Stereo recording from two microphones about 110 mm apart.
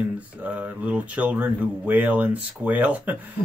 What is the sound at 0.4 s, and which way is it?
Speech, 15° right (ahead or behind).